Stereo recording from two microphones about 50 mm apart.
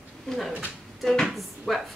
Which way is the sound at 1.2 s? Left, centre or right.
Centre.